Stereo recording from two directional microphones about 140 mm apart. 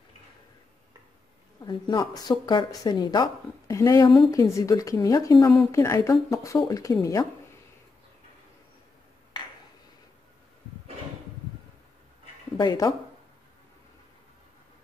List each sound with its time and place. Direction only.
1.6 s a woman's voice: 30° left (ahead or behind)
12.5 s speech: 30° left (ahead or behind)